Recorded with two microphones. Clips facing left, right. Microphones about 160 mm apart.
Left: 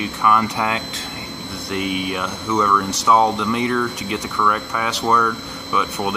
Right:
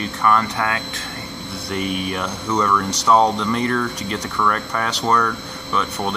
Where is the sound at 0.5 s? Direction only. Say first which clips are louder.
Left 1 dB; 20° left (ahead or behind).